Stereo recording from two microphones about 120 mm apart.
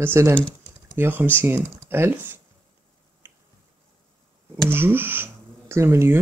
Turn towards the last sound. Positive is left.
turn(degrees=-20)  # may be behind; listen again after turning